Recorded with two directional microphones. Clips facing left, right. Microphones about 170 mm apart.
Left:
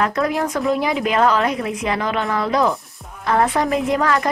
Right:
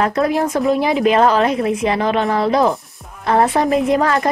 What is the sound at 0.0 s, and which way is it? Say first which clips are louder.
Speech: right 3 dB; 25° right (ahead or behind).